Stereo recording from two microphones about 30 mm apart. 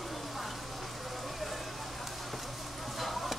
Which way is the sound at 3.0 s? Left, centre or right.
Centre.